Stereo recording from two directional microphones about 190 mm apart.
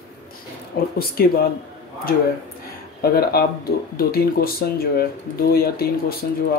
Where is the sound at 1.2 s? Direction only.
50° left (ahead or behind).